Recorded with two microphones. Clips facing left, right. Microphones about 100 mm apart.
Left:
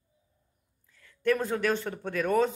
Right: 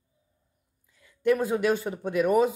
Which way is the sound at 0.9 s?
15° right (ahead or behind).